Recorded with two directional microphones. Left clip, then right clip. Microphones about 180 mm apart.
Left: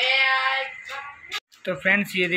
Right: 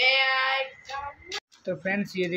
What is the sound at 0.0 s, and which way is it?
Child singing, 20° right (ahead or behind).